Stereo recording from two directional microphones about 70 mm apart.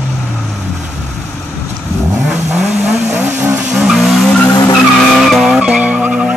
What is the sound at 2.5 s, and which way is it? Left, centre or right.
Vehicle, centre.